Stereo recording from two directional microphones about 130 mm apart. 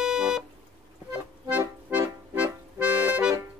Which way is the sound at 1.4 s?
20° right (ahead or behind).